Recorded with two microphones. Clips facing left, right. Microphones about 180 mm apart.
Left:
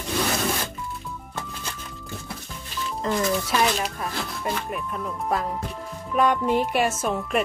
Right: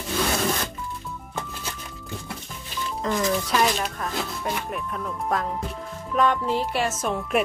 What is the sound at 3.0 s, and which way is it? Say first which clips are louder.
Speech: even; 5° left (ahead or behind).